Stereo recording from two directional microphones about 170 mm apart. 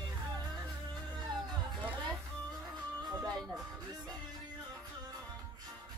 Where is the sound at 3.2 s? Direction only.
Centre (ahead or behind).